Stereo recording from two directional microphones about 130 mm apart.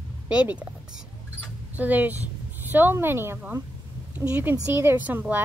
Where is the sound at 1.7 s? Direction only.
15° right (ahead or behind).